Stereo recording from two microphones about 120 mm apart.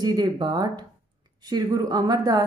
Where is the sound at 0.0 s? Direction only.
35° right (ahead or behind).